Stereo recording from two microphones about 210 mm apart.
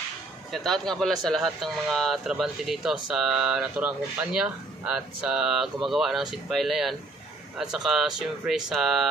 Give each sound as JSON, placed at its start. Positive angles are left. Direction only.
{"t": 0.5, "sound": "speech", "side_deg": 0}